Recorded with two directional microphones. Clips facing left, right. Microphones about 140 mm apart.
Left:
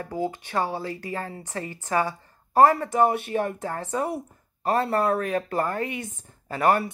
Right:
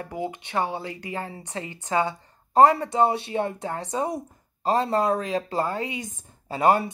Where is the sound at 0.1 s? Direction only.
20° right (ahead or behind).